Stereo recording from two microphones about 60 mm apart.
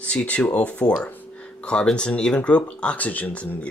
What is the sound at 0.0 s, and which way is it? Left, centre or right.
Speech, left.